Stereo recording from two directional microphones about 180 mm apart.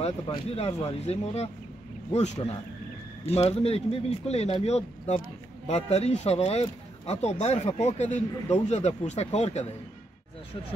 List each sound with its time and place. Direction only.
0.0 s speech: 35° left (ahead or behind)